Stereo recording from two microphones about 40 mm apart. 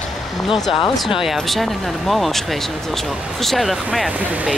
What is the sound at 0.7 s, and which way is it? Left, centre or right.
Speech, centre.